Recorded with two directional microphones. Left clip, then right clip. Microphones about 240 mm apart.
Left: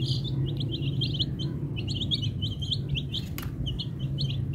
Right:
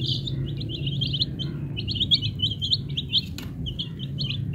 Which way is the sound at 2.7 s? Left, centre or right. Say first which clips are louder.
Right 5 dB; left.